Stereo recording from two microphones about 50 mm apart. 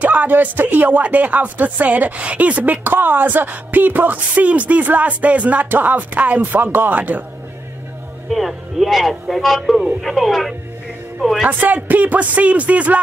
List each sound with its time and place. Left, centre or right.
0.0 s speech: right
8.3 s a man's voice: centre
11.4 s speech: right